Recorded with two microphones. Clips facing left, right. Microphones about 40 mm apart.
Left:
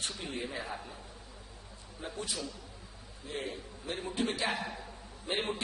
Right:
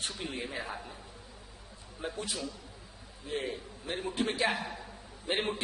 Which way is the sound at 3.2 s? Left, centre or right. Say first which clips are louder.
Right 3 dB; centre.